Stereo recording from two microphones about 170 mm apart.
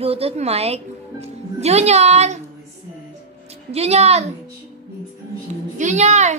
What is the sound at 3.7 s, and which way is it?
Speech, 40° right (ahead or behind).